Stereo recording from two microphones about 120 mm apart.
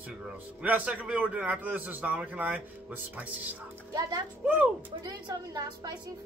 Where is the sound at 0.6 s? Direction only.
10° right (ahead or behind).